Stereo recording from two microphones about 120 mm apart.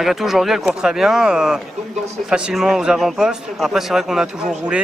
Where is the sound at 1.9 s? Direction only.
65° right (ahead or behind).